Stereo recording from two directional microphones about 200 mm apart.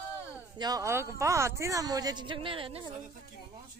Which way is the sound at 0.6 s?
15° right (ahead or behind).